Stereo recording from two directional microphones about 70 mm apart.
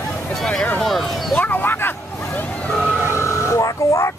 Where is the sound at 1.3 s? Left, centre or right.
Left.